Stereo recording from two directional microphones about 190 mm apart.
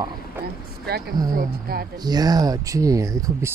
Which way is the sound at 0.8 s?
55° right (ahead or behind).